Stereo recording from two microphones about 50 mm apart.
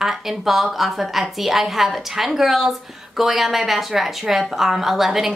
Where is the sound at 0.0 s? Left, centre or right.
Centre.